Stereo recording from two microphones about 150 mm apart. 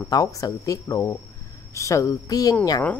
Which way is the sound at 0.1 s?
25° left (ahead or behind).